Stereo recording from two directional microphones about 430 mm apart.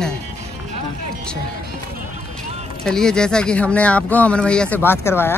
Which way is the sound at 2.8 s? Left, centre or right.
Centre.